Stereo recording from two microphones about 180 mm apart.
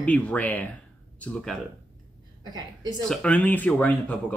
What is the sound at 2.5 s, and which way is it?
Speech, 20° right (ahead or behind).